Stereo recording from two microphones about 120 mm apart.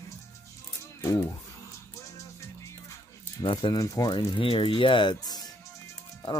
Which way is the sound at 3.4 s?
45° left (ahead or behind).